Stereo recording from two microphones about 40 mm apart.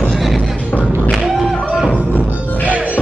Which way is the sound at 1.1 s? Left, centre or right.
Centre.